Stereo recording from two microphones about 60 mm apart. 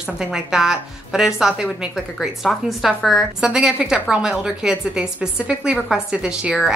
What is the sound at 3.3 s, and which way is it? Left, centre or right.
A woman's voice, centre.